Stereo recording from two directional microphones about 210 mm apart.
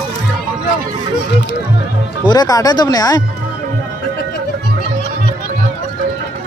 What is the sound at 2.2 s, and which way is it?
Speech, 20° left (ahead or behind).